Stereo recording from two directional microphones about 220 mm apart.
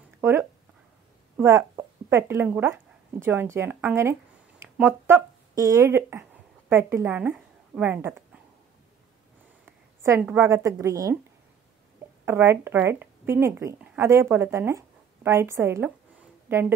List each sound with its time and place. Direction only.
0.2 s a woman's voice: 10° right (ahead or behind)
9.7 s speech: 10° right (ahead or behind)
12.3 s speech: 10° right (ahead or behind)